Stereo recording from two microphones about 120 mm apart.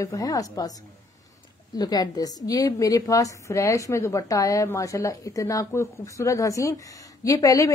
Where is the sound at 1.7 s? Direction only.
30° left (ahead or behind).